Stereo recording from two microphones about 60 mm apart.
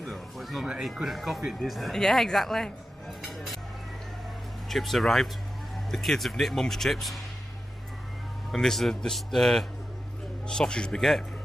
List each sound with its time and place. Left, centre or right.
0.0 s speech: centre
3.2 s music: centre
4.6 s speech: centre
8.5 s a man's voice: centre